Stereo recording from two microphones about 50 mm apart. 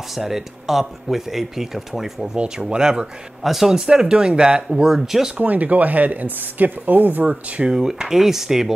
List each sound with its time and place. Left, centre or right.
0.1 s speech: centre
2.3 s speech: centre
3.4 s speech: centre
5.4 s speech: right
7.7 s speech: centre